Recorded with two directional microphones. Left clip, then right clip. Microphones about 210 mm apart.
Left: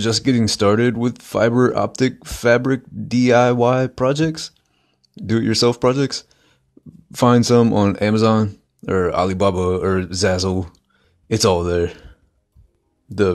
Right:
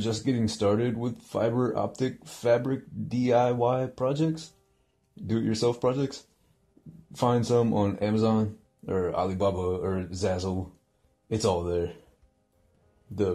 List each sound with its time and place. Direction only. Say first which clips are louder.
0.0 s speech: left 11 dB; 30° left (ahead or behind)